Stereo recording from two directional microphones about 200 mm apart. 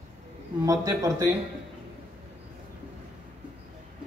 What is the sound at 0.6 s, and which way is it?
Speech, 15° right (ahead or behind).